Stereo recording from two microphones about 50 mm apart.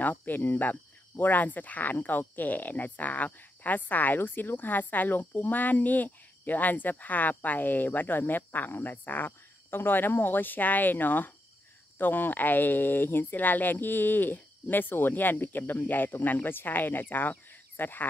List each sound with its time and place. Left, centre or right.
0.0 s speech: left